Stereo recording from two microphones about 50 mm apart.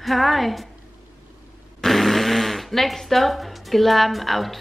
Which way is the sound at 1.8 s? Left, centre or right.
Centre.